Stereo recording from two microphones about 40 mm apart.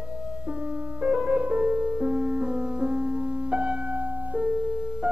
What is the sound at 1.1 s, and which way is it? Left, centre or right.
Music, right.